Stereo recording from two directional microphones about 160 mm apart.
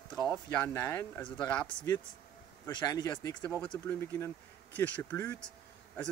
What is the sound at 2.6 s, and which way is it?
Speech, 25° left (ahead or behind).